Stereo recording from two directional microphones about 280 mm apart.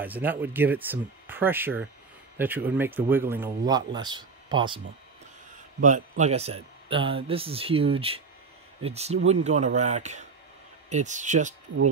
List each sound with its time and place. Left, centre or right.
0.0 s speech: centre
5.8 s a man's voice: right